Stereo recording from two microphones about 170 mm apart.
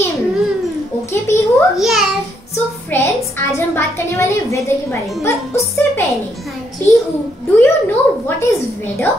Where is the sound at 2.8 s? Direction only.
15° left (ahead or behind).